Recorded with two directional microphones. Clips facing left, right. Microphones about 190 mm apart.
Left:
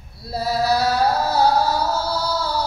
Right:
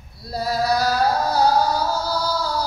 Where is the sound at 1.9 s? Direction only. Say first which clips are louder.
Left 1 dB; 25° left (ahead or behind).